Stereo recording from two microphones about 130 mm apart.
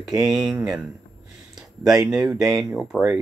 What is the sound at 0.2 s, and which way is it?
Speech, 5° right (ahead or behind).